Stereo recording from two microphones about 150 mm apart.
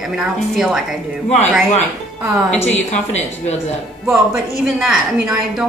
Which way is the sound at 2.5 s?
10° left (ahead or behind).